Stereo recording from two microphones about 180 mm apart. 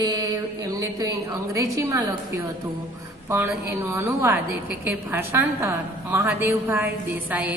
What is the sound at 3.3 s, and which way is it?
A woman's voice, 15° right (ahead or behind).